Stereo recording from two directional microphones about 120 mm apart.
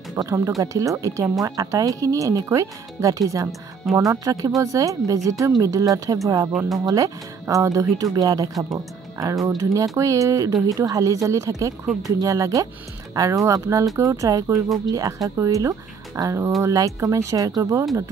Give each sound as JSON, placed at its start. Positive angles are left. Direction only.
{"t": 0.1, "sound": "speech", "side_deg": -30}
{"t": 11.8, "sound": "speech", "side_deg": -5}
{"t": 12.2, "sound": "speech", "side_deg": -30}